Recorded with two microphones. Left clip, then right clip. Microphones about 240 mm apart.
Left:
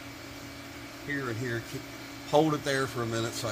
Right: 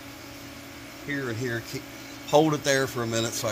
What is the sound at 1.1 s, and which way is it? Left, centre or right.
Speech, right.